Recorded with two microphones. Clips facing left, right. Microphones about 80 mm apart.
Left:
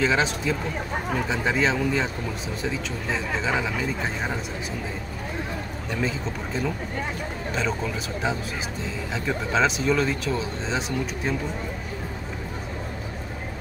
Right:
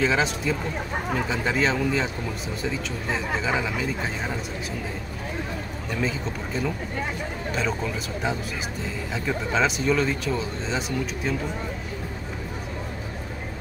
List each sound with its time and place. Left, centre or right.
0.0 s speech: centre
6.0 s speech: centre
9.5 s speech: centre